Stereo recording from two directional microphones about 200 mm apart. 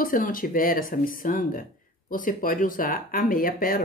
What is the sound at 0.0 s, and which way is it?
Speech, 45° left (ahead or behind).